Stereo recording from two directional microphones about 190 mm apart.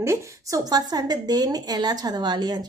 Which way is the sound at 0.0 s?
15° right (ahead or behind).